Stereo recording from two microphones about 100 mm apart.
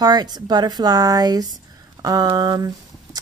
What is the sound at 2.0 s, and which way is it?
Mantra, 40° right (ahead or behind).